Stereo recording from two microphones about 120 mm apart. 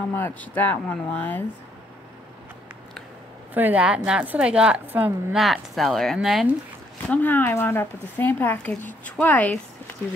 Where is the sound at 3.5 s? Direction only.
15° right (ahead or behind).